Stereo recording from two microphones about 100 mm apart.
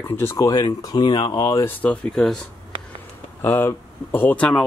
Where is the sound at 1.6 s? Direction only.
15° left (ahead or behind).